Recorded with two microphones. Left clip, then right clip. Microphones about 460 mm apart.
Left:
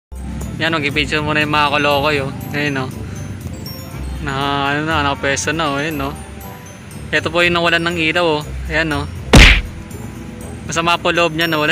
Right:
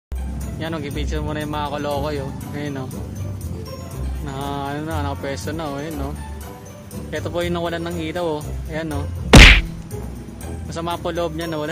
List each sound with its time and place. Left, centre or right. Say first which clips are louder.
0.6 s speech: left 12 dB; right
4.3 s speech: left 10 dB; right
7.1 s speech: left 10 dB; right
9.3 s whack: even; centre
10.7 s speech: left 10 dB; right